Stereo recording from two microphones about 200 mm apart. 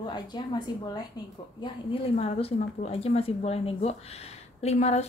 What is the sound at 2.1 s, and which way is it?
A woman's voice, 30° left (ahead or behind).